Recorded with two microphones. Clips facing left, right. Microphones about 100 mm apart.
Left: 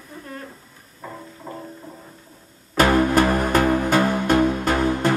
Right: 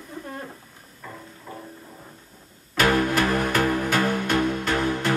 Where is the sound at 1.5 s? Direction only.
30° left (ahead or behind).